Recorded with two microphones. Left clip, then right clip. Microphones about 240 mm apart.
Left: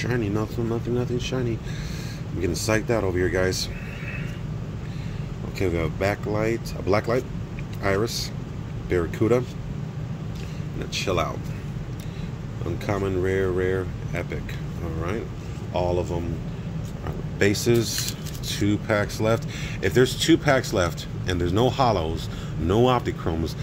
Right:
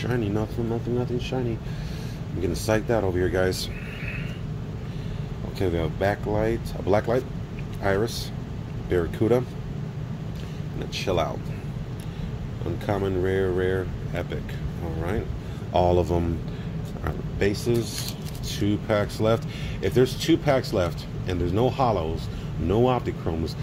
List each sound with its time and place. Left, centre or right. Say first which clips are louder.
0.0 s speech: left 1 dB; centre
2.4 s speech: left 1 dB; centre
5.6 s speech: even; centre
11.0 s speech: even; centre
12.8 s speech: even; centre
15.7 s speech: right 4 dB; centre
17.4 s speech: left 4 dB; left
18.5 s speech: left 1 dB; centre